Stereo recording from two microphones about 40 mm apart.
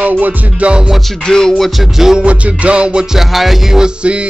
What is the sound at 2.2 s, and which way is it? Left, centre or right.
Music, right.